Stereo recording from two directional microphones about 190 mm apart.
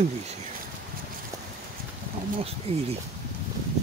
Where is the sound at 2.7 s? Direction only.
30° right (ahead or behind).